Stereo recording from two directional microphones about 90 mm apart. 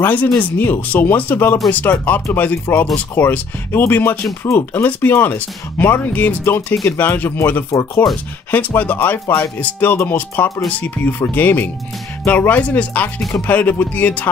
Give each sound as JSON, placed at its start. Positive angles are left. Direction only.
{"t": 0.0, "sound": "speech", "side_deg": 20}